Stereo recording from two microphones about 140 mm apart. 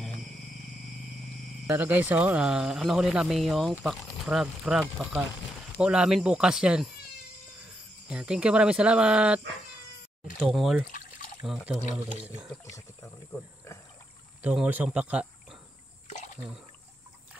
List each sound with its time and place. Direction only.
1.7 s speech: 15° right (ahead or behind)
8.1 s speech: 5° right (ahead or behind)
10.4 s speech: centre (ahead or behind)
10.9 s pour: 75° left (ahead or behind)
11.4 s speech: 5° right (ahead or behind)
14.5 s speech: 10° right (ahead or behind)